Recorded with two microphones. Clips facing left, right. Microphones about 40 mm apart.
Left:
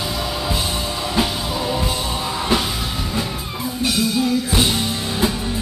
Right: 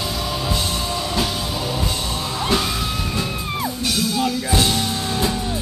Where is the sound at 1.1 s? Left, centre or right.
Centre.